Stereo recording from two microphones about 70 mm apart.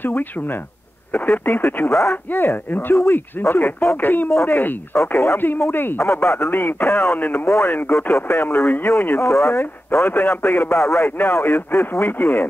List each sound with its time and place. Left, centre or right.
0.0 s speech: left
1.9 s speech: left
4.3 s speech: left
7.4 s speech: left
11.1 s speech: left